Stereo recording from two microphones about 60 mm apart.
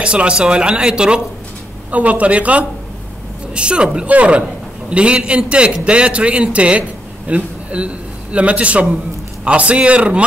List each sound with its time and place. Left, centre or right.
0.0 s speech: centre
1.9 s a man's voice: right